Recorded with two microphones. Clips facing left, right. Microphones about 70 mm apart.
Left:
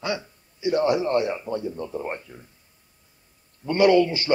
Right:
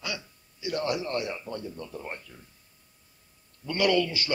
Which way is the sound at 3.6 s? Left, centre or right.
Left.